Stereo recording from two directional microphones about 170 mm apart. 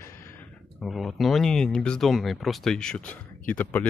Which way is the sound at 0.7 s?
Centre (ahead or behind).